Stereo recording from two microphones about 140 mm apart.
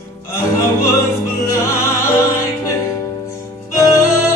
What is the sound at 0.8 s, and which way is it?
Opera, 25° left (ahead or behind).